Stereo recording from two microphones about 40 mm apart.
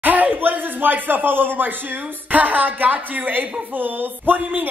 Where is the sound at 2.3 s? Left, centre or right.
Right.